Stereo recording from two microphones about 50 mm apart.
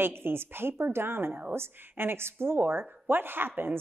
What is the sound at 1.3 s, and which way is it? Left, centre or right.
Speech, right.